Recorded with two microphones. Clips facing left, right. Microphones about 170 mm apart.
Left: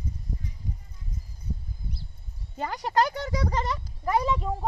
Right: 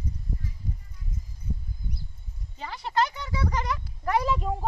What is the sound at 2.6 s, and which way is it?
Speech, 45° left (ahead or behind).